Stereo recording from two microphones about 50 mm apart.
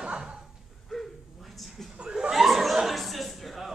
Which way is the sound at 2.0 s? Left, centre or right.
Centre.